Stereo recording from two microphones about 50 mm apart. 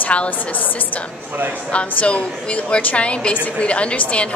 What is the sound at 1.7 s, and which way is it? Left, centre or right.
A woman's voice, left.